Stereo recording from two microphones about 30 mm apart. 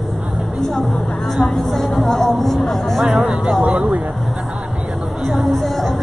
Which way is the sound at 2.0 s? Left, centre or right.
Centre.